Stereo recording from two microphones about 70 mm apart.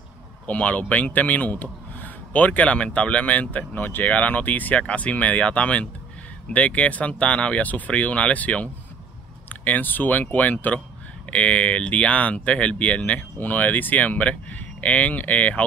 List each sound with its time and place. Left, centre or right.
0.5 s speech: left